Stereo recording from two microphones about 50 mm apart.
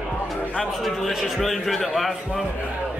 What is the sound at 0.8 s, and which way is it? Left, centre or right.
A man's voice, centre.